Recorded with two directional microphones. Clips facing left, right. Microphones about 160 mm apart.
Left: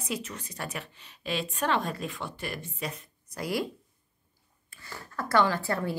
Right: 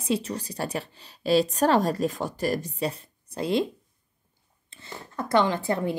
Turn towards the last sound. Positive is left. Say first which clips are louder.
# right 4 dB
turn(degrees=-20)  # may be behind; listen again after turning